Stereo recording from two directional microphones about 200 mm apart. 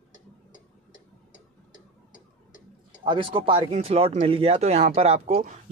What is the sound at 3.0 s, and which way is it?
Speech, 25° right (ahead or behind).